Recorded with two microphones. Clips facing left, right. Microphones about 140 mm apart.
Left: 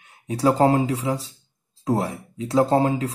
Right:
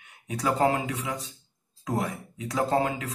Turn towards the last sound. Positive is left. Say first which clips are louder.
# left 6 dB
turn(degrees=30)  # may be behind; listen again after turning